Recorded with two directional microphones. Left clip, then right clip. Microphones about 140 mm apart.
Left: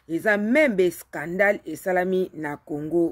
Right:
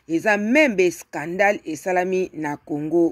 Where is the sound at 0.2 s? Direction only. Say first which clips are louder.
Right 2 dB; 25° right (ahead or behind).